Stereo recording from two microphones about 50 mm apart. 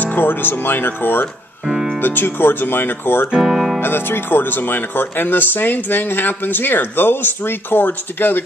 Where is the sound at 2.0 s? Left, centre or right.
Left.